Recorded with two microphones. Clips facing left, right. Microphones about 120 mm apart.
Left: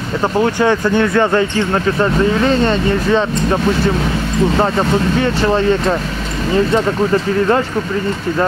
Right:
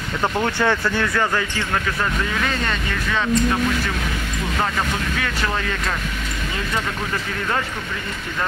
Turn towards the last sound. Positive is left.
turn(degrees=30)  # may be behind; listen again after turning